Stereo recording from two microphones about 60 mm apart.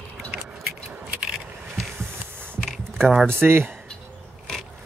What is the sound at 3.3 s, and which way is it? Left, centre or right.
Speech, right.